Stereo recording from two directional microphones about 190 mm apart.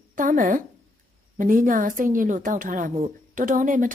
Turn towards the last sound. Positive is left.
turn(degrees=-45)  # may be behind; listen again after turning